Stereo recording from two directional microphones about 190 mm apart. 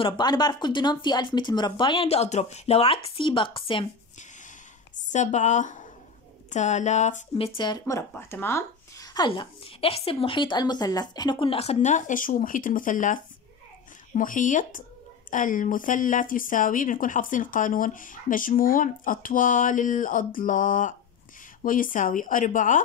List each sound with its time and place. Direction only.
0.0 s speech: 20° left (ahead or behind)
4.9 s a woman's voice: 40° left (ahead or behind)